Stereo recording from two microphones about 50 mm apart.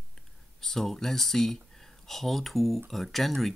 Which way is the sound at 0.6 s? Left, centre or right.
Centre.